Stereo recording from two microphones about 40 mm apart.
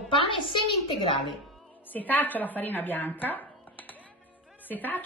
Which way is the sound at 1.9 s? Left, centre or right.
Left.